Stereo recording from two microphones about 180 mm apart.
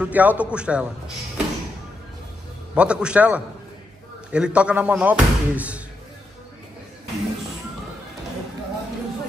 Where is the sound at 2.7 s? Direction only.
5° right (ahead or behind).